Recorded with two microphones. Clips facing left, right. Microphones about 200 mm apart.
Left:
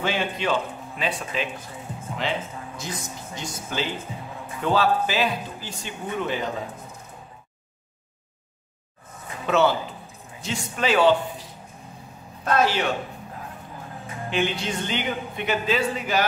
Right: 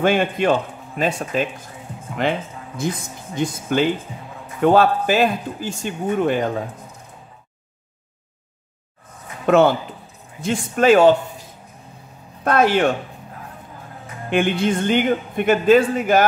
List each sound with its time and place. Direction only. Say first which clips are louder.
0.0 s speech: right 8 dB; 50° right (ahead or behind)
9.5 s speech: right 6 dB; 50° right (ahead or behind)
12.4 s speech: right 6 dB; 55° right (ahead or behind)
14.3 s speech: right 7 dB; 55° right (ahead or behind)